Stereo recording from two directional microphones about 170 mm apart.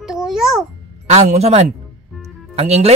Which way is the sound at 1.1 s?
40° right (ahead or behind).